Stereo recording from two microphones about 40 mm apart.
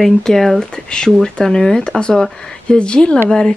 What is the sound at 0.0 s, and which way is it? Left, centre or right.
Speech, centre.